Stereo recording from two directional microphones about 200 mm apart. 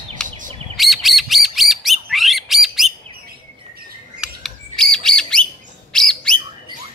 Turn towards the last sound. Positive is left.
turn(degrees=5)  # may be behind; listen again after turning